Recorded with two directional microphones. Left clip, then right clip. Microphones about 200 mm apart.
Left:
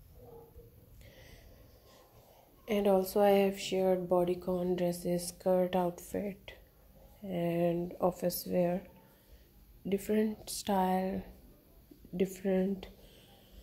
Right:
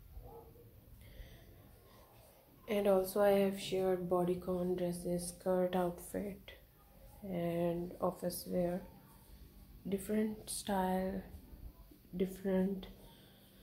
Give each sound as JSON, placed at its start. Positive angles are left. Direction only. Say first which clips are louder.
{"t": 2.6, "sound": "speech", "louder": "left 3 dB", "side_deg": 25}
{"t": 9.8, "sound": "speech", "louder": "left 6 dB", "side_deg": 30}
{"t": 12.2, "sound": "speech", "louder": "left 4 dB", "side_deg": 30}